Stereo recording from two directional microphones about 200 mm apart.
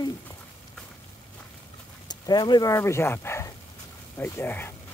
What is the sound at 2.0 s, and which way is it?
Speech, 20° left (ahead or behind).